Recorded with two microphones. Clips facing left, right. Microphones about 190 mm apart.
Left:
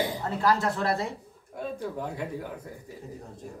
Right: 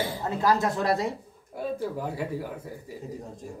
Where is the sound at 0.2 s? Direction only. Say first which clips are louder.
Right 3 dB; 15° right (ahead or behind).